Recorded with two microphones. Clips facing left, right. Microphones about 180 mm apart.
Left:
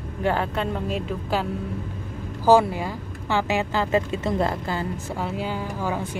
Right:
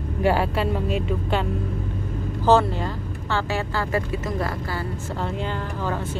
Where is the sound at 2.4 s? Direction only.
10° left (ahead or behind).